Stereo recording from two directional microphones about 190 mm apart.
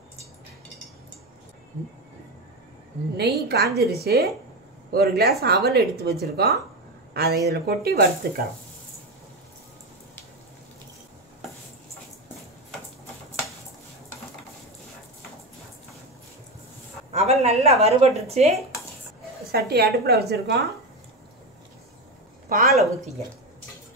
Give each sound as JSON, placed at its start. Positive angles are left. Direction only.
{"t": 3.2, "sound": "speech", "side_deg": -60}
{"t": 17.1, "sound": "a sound", "side_deg": -35}
{"t": 19.5, "sound": "speech", "side_deg": -55}
{"t": 22.5, "sound": "a woman's voice", "side_deg": -50}